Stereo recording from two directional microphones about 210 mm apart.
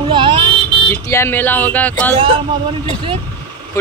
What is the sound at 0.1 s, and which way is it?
Vehicle, 25° right (ahead or behind).